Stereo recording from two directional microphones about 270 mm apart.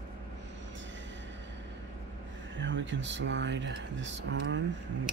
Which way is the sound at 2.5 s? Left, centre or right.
Right.